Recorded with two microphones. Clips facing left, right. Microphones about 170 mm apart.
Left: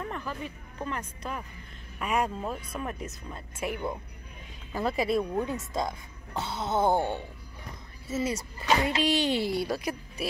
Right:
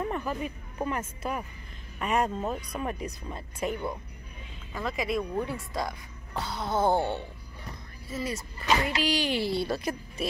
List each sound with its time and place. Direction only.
0.0 s speech: 15° right (ahead or behind)
2.0 s speech: 10° left (ahead or behind)
2.7 s speech: centre (ahead or behind)
4.7 s speech: 30° left (ahead or behind); by 7.2 s 15° left (ahead or behind)
8.3 s speech: 25° left (ahead or behind); by 10.2 s 10° left (ahead or behind)